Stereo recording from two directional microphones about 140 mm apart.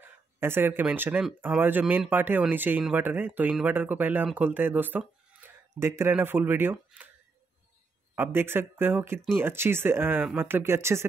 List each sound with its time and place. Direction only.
0.0 s speech: 15° right (ahead or behind)
8.2 s speech: 15° right (ahead or behind)